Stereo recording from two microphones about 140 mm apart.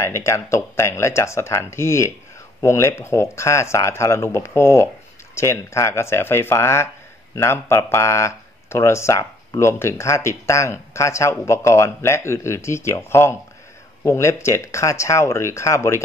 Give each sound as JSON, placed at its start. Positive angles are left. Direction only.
{"t": 0.0, "sound": "speech", "side_deg": 20}